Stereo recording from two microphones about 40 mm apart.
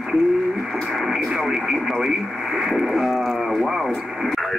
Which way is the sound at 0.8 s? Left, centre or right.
Centre.